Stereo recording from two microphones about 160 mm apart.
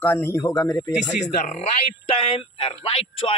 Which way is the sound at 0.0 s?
15° left (ahead or behind).